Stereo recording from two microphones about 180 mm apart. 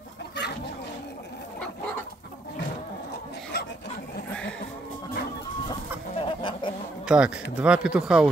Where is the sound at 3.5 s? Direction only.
65° left (ahead or behind).